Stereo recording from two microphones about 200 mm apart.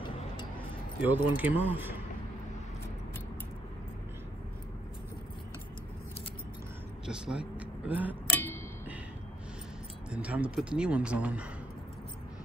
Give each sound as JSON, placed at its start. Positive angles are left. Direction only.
{"t": 1.0, "sound": "speech", "side_deg": -10}
{"t": 7.1, "sound": "speech", "side_deg": -5}
{"t": 8.3, "sound": "music", "side_deg": 10}
{"t": 10.1, "sound": "speech", "side_deg": -5}